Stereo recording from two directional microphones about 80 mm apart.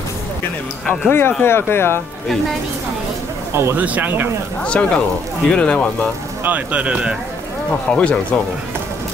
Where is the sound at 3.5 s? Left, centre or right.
Right.